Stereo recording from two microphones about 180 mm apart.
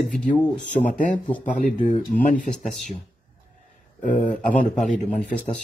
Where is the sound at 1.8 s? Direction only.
50° left (ahead or behind).